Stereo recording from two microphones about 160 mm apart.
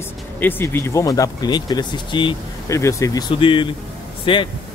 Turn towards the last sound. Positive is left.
turn(degrees=35)  # may be behind; listen again after turning